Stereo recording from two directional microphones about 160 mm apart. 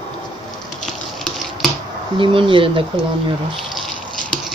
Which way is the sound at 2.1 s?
35° right (ahead or behind).